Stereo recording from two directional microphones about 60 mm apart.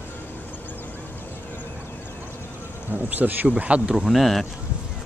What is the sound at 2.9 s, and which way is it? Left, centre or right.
Speech, right.